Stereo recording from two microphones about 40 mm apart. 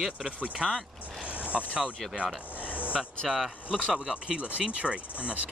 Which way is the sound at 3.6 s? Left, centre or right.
Right.